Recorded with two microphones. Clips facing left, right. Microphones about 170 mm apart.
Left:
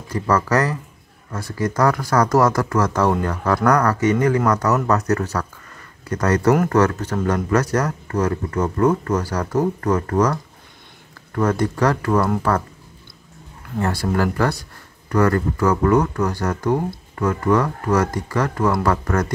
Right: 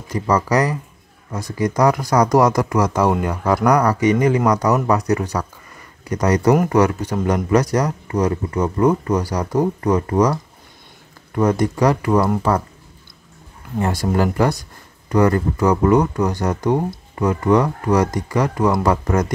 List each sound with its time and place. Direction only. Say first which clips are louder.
0.1 s speech: right 1 dB; 15° right (ahead or behind)
13.7 s speech: right 2 dB; 15° right (ahead or behind)